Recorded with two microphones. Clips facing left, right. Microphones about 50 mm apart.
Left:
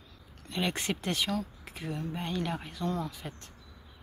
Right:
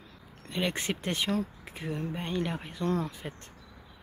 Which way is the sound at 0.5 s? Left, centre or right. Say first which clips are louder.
Right 1 dB; centre.